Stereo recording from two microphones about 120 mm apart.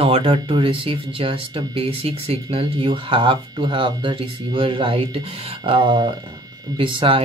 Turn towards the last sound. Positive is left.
turn(degrees=-45)  # may be behind; listen again after turning